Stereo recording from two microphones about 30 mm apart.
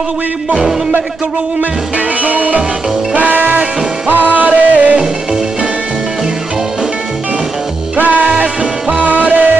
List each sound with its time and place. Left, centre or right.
2.2 s music: right
3.2 s music: right
4.4 s music: right
8.0 s music: right